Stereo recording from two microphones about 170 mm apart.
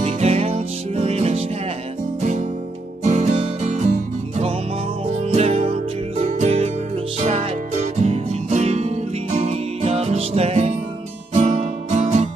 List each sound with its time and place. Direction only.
0.0 s music: 40° right (ahead or behind)
3.0 s music: 40° right (ahead or behind)
5.3 s music: 35° right (ahead or behind)